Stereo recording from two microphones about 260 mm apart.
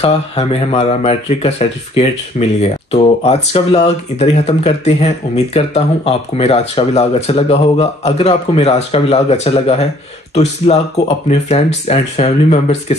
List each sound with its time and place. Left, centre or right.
0.0 s speech: left